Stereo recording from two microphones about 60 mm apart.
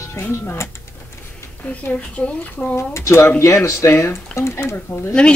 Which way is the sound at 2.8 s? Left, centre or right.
Left.